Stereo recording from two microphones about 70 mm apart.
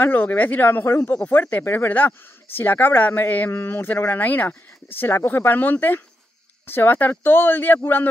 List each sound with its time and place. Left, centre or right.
0.0 s speech: left
4.1 s speech: left